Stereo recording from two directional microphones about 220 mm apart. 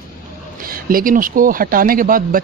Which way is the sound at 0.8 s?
40° right (ahead or behind).